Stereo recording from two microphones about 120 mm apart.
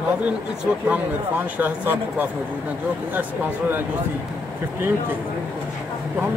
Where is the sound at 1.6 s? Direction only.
15° right (ahead or behind).